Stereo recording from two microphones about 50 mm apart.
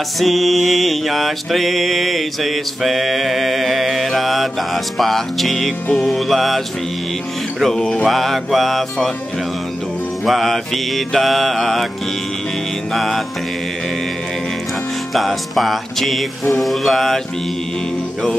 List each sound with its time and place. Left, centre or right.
0.2 s mantra: centre
7.6 s music: centre
8.0 s mantra: centre
10.2 s mantra: centre
12.9 s mantra: centre
15.1 s mantra: centre